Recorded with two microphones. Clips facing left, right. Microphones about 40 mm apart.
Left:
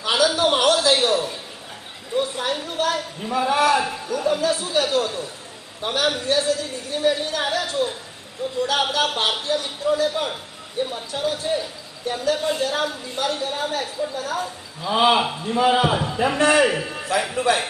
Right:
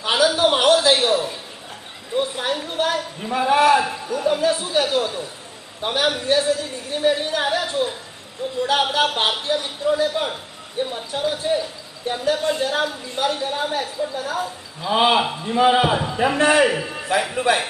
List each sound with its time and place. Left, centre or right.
0.0 s a sound: centre
3.0 s a man's voice: centre
12.1 s speech: right
12.4 s a man's voice: centre